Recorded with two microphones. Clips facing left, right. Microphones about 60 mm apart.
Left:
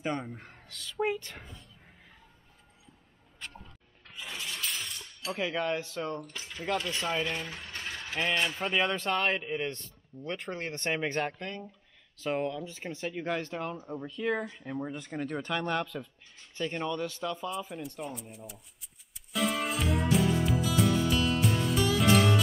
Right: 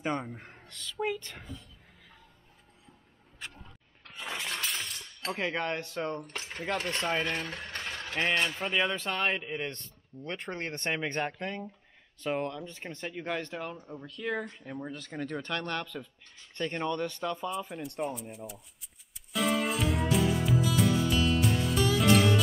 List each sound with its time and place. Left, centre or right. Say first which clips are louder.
0.0 s speech: right 1 dB; centre
0.9 s speech: left 2 dB; centre
1.2 s a man's voice: even; centre
4.2 s shatter: right 3 dB; right
5.3 s a man's voice: left 1 dB; centre
6.2 s speech: even; right
8.4 s a man's voice: even; centre
11.3 s speech: right 3 dB; centre
12.2 s a man's voice: left 1 dB; centre
18.0 s music: right 5 dB; centre